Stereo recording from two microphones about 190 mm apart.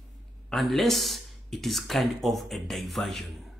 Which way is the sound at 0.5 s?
Centre (ahead or behind).